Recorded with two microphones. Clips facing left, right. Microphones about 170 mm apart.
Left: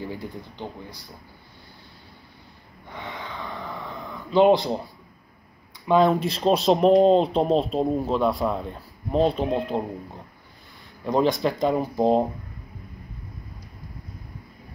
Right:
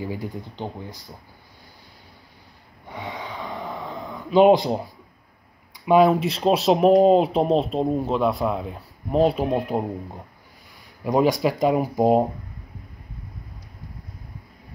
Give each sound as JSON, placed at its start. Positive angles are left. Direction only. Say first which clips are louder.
{"t": 0.0, "sound": "speech", "louder": "right 3 dB", "side_deg": -15}
{"t": 2.9, "sound": "a sound", "louder": "right 3 dB", "side_deg": -15}
{"t": 5.9, "sound": "speech", "louder": "right 3 dB", "side_deg": -10}
{"t": 11.1, "sound": "speech", "louder": "right 2 dB", "side_deg": -10}